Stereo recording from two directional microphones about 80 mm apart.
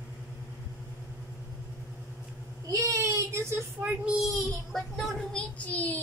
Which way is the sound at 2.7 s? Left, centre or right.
Right.